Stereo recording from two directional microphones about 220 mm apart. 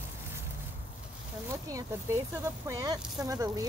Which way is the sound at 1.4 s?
15° right (ahead or behind).